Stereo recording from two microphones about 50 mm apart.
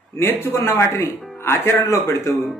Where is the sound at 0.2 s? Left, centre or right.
Left.